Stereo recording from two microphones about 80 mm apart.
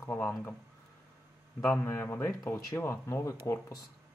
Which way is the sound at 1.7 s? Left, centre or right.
Left.